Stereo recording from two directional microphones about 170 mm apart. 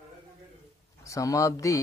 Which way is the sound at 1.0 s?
20° left (ahead or behind).